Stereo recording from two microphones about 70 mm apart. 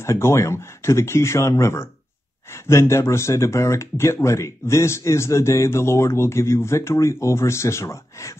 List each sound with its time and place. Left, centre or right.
0.0 s speech: left